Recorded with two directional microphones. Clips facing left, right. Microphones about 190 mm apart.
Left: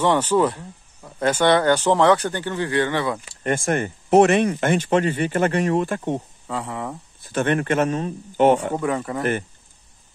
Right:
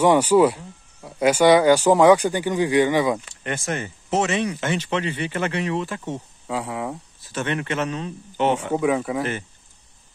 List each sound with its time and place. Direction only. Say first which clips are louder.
0.0 s speech: right 3 dB; 10° right (ahead or behind)
3.4 s speech: left 6 dB; 50° left (ahead or behind)
6.4 s speech: right 1 dB; 5° right (ahead or behind)
7.2 s speech: left 6 dB; 55° left (ahead or behind)
8.7 s speech: right 3 dB; 5° right (ahead or behind)